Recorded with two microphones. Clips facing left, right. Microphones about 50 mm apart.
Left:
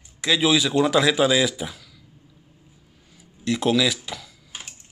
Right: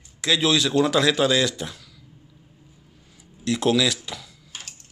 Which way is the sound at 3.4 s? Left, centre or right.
Centre.